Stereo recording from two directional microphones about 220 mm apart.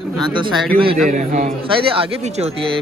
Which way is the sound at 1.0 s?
35° right (ahead or behind).